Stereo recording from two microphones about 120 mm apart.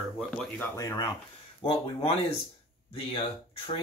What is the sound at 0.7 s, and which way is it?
Speech, 30° left (ahead or behind).